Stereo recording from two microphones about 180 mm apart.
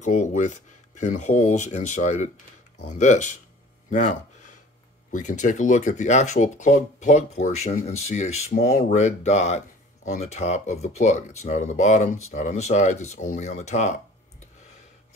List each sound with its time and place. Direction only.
0.0 s speech: 40° left (ahead or behind)